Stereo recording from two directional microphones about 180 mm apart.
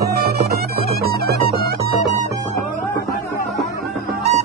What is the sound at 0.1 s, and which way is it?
Music, 60° right (ahead or behind).